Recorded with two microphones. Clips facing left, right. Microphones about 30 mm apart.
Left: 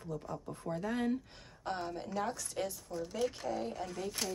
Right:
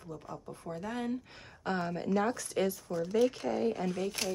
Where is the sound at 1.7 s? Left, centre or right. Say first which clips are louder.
Right 8 dB; right.